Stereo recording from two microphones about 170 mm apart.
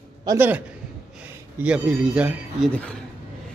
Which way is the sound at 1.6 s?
5° right (ahead or behind).